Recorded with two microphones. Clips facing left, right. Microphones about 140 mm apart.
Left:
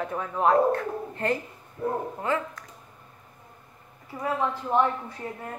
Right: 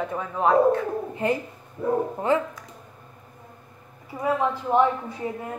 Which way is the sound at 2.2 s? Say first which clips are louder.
Right 6 dB; 25° right (ahead or behind).